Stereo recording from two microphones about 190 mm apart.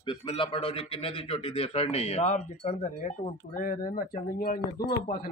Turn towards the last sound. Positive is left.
turn(degrees=50)  # may be behind; listen again after turning